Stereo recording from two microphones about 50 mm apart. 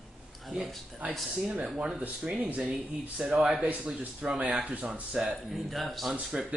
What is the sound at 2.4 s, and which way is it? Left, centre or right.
Speech, right.